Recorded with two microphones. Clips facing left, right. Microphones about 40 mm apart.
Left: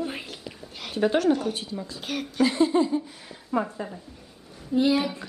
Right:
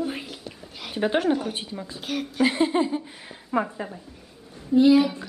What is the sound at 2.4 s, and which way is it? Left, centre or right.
Speech, right.